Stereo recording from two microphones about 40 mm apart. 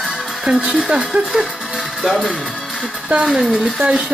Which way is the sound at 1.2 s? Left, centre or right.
Centre.